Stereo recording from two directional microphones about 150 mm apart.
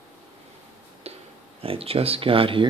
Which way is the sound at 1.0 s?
45° right (ahead or behind).